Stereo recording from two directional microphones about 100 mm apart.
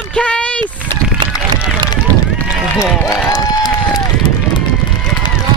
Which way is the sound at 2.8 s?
35° left (ahead or behind).